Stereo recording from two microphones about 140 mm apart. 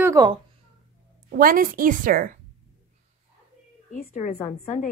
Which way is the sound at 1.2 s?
85° right.